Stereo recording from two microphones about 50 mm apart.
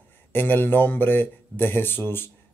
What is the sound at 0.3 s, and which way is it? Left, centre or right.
Speech, left.